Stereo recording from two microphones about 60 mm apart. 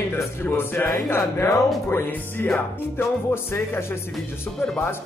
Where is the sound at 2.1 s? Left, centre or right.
Left.